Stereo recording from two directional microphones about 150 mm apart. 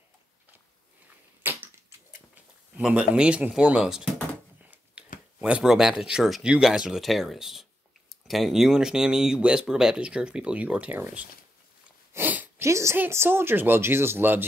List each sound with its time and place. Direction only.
1.4 s crushing: 15° right (ahead or behind)
2.8 s speech: 5° right (ahead or behind)
5.0 s scissors: 5° right (ahead or behind)
5.4 s speech: 5° right (ahead or behind)